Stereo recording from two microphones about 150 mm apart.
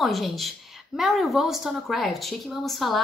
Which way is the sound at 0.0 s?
Centre (ahead or behind).